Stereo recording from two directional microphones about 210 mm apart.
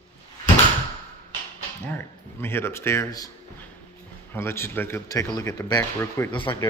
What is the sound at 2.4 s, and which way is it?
Speech, 10° left (ahead or behind).